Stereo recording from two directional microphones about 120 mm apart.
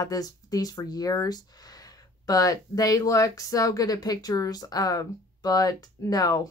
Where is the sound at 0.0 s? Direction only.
30° left (ahead or behind).